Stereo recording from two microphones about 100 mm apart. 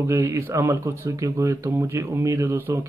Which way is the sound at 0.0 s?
30° right (ahead or behind).